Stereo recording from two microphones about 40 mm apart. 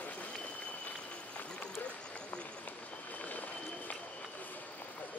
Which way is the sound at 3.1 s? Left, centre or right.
Left.